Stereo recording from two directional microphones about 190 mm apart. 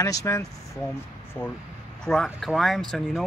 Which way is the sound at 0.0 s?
15° left (ahead or behind).